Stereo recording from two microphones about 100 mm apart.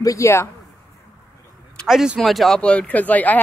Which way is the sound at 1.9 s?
5° right (ahead or behind).